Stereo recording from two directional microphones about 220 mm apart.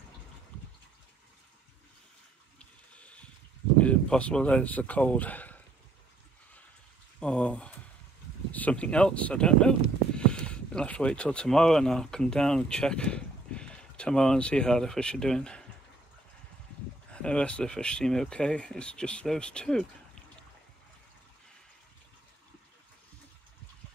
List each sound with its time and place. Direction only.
2.6 s water: 5° left (ahead or behind)
3.7 s speech: 5° left (ahead or behind)
7.2 s a sound: 5° left (ahead or behind)
8.5 s speech: 5° left (ahead or behind)
17.1 s speech: 5° left (ahead or behind)